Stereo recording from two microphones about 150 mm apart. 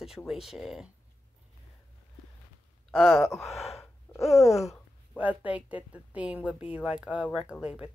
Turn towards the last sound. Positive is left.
turn(degrees=-5)  # may be behind; listen again after turning